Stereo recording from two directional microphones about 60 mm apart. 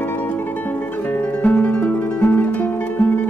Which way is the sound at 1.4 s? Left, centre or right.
Left.